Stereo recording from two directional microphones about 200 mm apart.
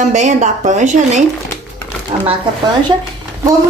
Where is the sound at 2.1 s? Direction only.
25° right (ahead or behind).